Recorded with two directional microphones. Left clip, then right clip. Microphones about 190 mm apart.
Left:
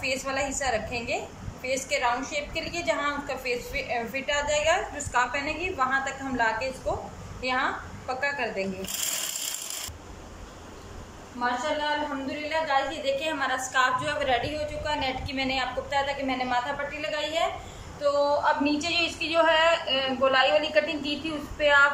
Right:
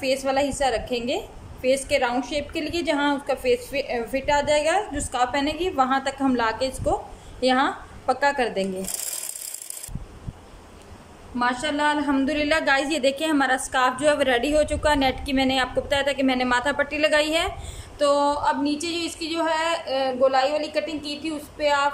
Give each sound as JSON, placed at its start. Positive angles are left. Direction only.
{"t": 0.0, "sound": "a woman's voice", "side_deg": -25}
{"t": 11.3, "sound": "a woman's voice", "side_deg": -55}
{"t": 18.6, "sound": "a woman's voice", "side_deg": -30}